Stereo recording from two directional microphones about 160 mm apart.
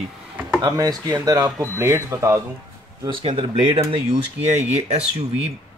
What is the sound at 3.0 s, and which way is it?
Speech, 35° right (ahead or behind).